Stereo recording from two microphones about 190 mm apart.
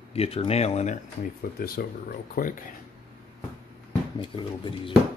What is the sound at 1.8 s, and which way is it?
Speech, 55° left (ahead or behind).